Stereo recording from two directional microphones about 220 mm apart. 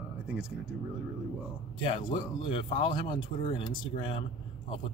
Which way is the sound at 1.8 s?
25° left (ahead or behind).